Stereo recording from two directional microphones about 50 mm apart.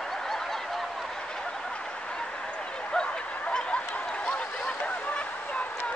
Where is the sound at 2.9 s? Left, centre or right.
Centre.